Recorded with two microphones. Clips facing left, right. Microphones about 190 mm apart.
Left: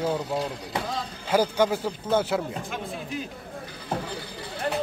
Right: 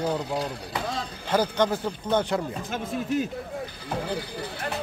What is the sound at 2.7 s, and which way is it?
Speech, 45° right (ahead or behind).